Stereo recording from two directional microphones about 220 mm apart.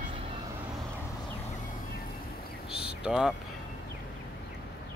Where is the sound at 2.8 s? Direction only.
5° right (ahead or behind).